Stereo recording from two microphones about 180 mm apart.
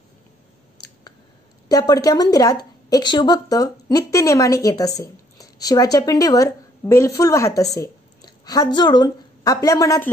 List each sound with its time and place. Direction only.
1.7 s a woman's voice: 20° left (ahead or behind)